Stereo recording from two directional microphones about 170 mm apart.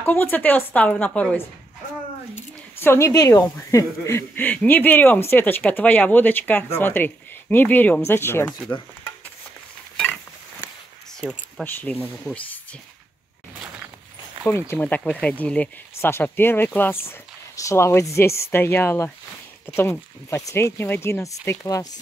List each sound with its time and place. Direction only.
0.0 s speech: 10° left (ahead or behind)
11.2 s speech: 5° right (ahead or behind)
11.6 s speech: 10° left (ahead or behind)
14.4 s speech: 10° left (ahead or behind)